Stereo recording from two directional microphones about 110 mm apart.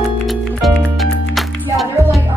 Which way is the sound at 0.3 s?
Centre (ahead or behind).